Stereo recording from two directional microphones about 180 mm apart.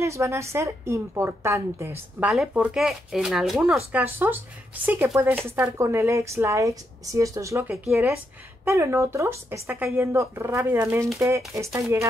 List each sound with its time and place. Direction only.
0.0 s a woman's voice: 15° right (ahead or behind)
7.7 s speech: 5° right (ahead or behind)
8.6 s a woman's voice: 15° right (ahead or behind)